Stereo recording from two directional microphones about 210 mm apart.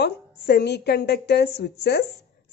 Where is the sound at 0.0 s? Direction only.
50° left (ahead or behind).